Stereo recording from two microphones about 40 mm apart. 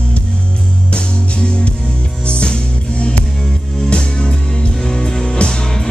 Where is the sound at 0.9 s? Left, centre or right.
Left.